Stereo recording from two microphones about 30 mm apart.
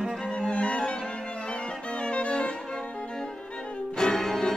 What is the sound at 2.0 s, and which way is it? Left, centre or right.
Music, left.